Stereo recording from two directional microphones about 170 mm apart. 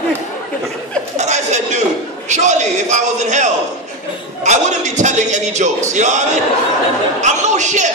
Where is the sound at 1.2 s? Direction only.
40° right (ahead or behind).